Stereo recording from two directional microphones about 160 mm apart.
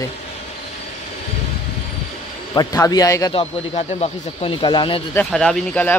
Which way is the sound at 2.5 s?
20° left (ahead or behind).